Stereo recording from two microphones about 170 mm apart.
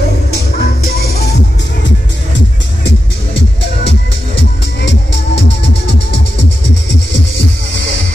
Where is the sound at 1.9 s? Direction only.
90° left.